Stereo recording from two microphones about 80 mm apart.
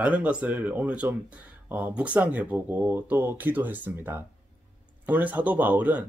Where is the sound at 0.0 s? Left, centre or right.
Centre.